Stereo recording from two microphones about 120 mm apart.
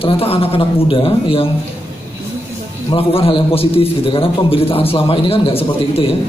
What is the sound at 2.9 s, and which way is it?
A man's voice, 50° left (ahead or behind).